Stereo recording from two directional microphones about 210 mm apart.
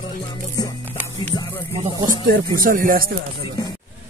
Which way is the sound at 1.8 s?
20° right (ahead or behind).